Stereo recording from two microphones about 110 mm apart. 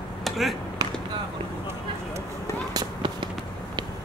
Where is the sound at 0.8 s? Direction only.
40° right (ahead or behind).